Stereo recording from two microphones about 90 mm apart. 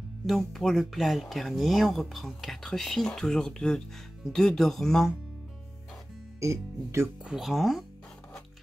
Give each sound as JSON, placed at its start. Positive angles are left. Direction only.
{"t": 0.3, "sound": "speech", "side_deg": 0}
{"t": 6.4, "sound": "speech", "side_deg": -30}
{"t": 7.2, "sound": "speech", "side_deg": -5}